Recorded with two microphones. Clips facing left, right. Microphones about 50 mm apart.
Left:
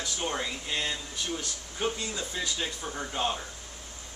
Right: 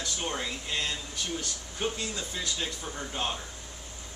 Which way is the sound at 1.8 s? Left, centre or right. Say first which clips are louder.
Left 1 dB; centre.